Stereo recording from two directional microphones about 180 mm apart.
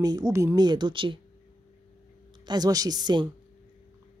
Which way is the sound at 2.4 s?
25° right (ahead or behind).